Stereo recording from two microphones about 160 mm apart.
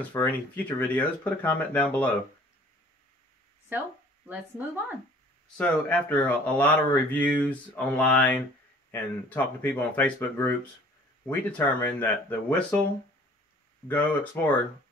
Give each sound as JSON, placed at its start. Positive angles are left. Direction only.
{"t": 0.2, "sound": "speech", "side_deg": 10}
{"t": 3.7, "sound": "speech", "side_deg": -10}
{"t": 5.6, "sound": "speech", "side_deg": 10}
{"t": 13.8, "sound": "speech", "side_deg": 10}